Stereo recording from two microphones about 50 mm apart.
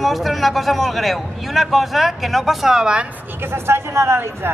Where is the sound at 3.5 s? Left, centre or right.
Right.